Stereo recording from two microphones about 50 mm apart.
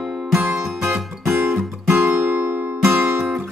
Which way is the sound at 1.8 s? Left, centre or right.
Right.